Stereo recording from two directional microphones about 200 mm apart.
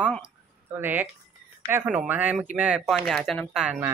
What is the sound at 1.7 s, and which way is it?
Speech, 10° right (ahead or behind).